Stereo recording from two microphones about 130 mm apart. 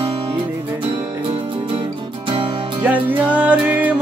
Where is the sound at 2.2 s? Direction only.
40° right (ahead or behind).